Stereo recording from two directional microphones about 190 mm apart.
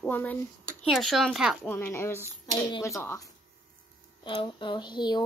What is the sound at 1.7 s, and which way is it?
A woman's voice, 15° left (ahead or behind).